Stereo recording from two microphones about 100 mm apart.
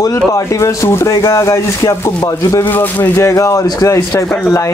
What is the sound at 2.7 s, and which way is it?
Speech, 20° left (ahead or behind).